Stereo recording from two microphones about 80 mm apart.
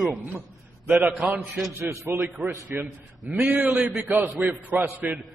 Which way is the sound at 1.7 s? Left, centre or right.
Right.